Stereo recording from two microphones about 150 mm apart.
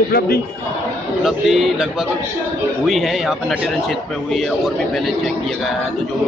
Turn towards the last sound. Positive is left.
turn(degrees=0)  # may be behind; listen again after turning